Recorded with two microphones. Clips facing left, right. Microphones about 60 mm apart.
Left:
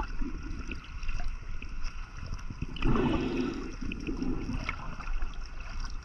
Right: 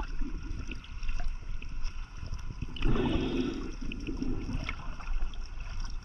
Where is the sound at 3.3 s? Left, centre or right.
Left.